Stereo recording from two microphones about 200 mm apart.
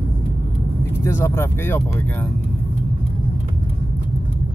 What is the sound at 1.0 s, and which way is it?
Speech, 10° left (ahead or behind).